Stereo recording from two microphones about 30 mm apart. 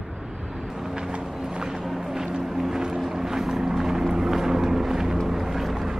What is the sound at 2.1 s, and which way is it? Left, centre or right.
Vehicle, right.